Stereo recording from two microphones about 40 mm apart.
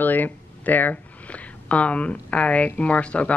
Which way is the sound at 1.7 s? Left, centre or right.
Left.